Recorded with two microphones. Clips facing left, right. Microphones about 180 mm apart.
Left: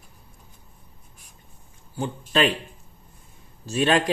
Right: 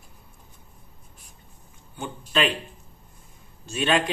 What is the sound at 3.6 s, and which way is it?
Speech, 35° left (ahead or behind).